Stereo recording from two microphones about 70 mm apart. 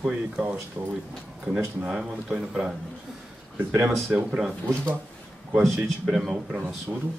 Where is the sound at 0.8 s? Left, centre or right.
Right.